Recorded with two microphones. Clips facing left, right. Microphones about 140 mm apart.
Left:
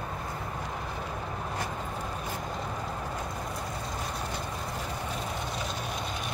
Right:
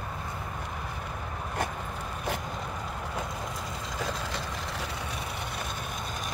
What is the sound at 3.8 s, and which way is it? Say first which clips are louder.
Vehicle: right 1 dB; 90° right.